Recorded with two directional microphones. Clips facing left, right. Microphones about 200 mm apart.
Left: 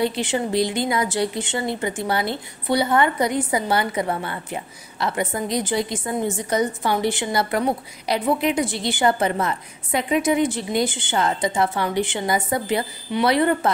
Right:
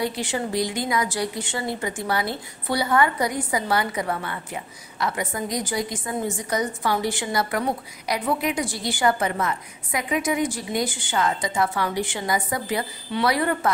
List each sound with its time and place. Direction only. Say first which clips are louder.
0.0 s a woman's voice: left 4 dB; 25° left (ahead or behind)